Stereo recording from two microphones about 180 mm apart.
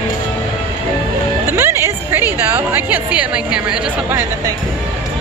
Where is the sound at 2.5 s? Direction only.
10° right (ahead or behind).